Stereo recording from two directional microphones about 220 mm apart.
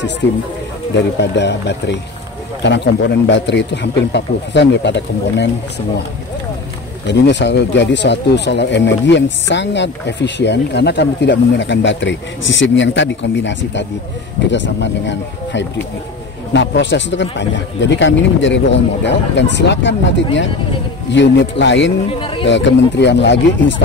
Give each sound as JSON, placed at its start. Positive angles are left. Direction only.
{"t": 0.2, "sound": "speech", "side_deg": 50}
{"t": 7.1, "sound": "a man's voice", "side_deg": 55}
{"t": 22.2, "sound": "speech", "side_deg": 25}
{"t": 22.5, "sound": "speech", "side_deg": 55}